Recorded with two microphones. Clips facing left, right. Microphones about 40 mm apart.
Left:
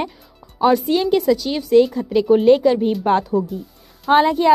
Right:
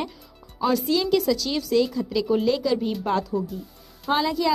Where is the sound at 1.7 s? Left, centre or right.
Left.